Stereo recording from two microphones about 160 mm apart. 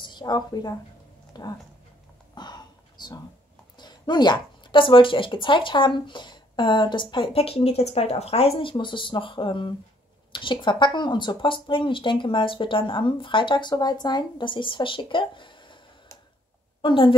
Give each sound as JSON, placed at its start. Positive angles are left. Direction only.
{"t": 0.0, "sound": "speech", "side_deg": 25}
{"t": 2.3, "sound": "a sound", "side_deg": 25}
{"t": 3.7, "sound": "speech", "side_deg": 25}
{"t": 16.8, "sound": "speech", "side_deg": 30}